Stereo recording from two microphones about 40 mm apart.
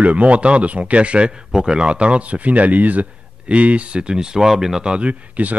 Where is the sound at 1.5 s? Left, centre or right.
Centre.